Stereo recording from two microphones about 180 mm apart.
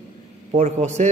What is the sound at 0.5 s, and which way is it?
Speech, 40° right (ahead or behind).